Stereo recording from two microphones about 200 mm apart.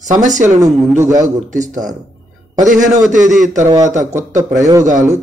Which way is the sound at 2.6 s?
40° right (ahead or behind).